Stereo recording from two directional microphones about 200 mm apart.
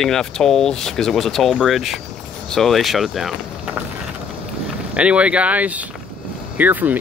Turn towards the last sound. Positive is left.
turn(degrees=-10)  # may be behind; listen again after turning